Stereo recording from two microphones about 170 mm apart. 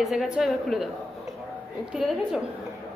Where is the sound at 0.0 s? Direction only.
Centre (ahead or behind).